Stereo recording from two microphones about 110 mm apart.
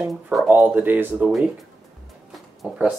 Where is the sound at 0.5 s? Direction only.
15° right (ahead or behind).